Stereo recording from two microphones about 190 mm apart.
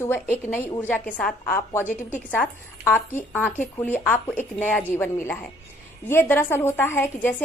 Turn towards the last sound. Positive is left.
turn(degrees=10)  # may be behind; listen again after turning